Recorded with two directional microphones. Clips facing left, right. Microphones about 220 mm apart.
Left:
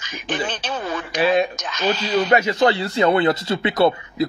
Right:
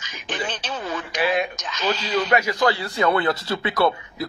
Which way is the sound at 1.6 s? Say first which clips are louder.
Left 3 dB; 55° left (ahead or behind).